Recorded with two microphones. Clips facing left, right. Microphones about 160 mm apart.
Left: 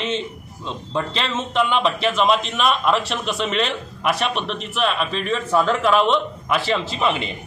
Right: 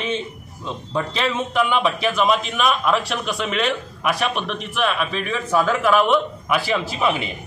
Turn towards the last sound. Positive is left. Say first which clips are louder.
# even
turn(degrees=-5)  # may be behind; listen again after turning